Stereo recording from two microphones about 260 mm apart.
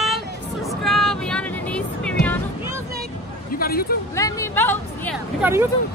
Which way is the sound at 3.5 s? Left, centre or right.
Left.